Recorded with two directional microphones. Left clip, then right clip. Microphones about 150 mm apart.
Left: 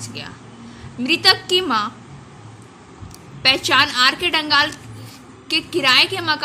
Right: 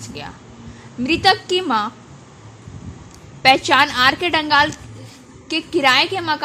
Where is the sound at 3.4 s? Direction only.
35° right (ahead or behind).